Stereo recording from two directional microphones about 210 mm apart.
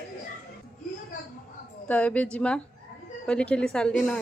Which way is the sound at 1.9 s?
5° left (ahead or behind).